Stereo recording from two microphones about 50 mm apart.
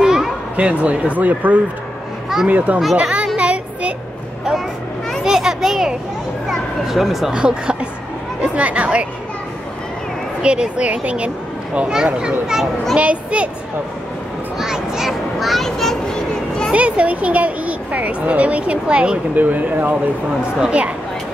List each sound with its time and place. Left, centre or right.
0.0 s a sound: centre
0.6 s a woman's voice: right
3.0 s children playing: right
3.3 s child singing: right
5.2 s children playing: centre
6.5 s speech: centre
7.3 s a woman's voice: centre
10.4 s speech: right
11.9 s a child's voice: centre
12.9 s a woman's voice: right
14.6 s children playing: centre
16.7 s a woman's voice: right
19.3 s a woman's voice: right